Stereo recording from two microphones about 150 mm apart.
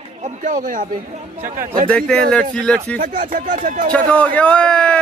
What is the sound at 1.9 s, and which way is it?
Speech, 5° left (ahead or behind).